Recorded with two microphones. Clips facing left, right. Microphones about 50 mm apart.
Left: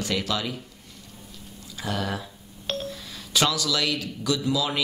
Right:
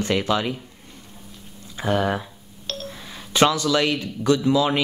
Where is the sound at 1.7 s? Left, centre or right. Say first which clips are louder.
Right 7 dB; right.